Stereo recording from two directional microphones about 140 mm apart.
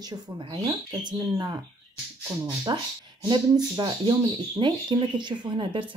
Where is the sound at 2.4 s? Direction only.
35° right (ahead or behind).